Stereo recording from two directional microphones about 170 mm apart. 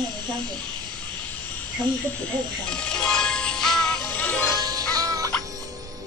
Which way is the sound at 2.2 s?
5° left (ahead or behind).